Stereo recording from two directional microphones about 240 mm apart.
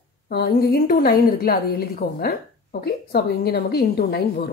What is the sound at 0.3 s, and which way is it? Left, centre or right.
A woman's voice, left.